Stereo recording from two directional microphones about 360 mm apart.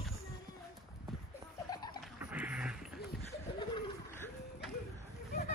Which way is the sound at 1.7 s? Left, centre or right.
Centre.